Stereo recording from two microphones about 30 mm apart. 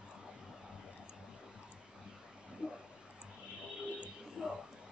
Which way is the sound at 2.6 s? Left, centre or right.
Right.